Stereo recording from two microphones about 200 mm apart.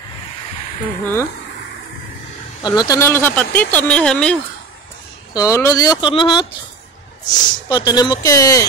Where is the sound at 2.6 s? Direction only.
20° left (ahead or behind).